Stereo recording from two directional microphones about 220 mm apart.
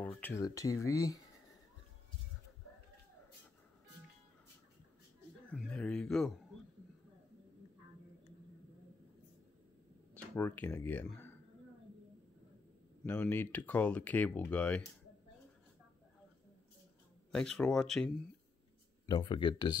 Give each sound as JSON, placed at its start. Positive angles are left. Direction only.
{"t": 0.0, "sound": "speech", "side_deg": 10}
{"t": 5.5, "sound": "speech", "side_deg": 5}
{"t": 10.1, "sound": "speech", "side_deg": 10}
{"t": 13.0, "sound": "speech", "side_deg": 10}
{"t": 17.3, "sound": "speech", "side_deg": 5}
{"t": 19.0, "sound": "speech", "side_deg": 20}